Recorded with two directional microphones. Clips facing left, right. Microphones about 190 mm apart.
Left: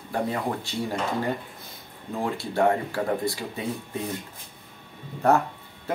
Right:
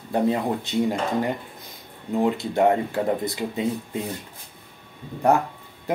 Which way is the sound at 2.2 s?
20° right (ahead or behind).